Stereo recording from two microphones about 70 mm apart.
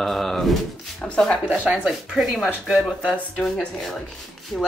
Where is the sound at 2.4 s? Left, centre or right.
Centre.